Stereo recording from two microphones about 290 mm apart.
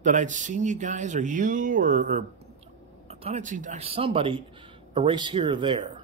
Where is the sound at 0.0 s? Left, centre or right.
Right.